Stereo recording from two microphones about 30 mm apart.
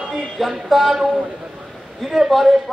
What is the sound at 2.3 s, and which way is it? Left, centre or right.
Speech, centre.